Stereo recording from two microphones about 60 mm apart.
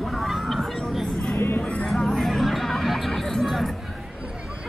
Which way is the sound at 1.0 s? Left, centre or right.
Centre.